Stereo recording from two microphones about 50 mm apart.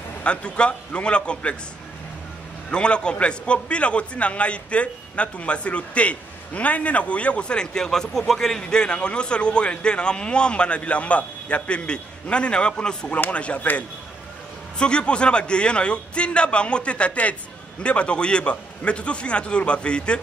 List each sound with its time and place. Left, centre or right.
0.2 s a man's voice: left
2.7 s a man's voice: centre
14.8 s a man's voice: centre